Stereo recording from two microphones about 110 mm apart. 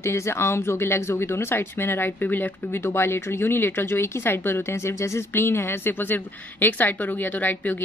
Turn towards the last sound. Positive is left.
turn(degrees=15)  # may be behind; listen again after turning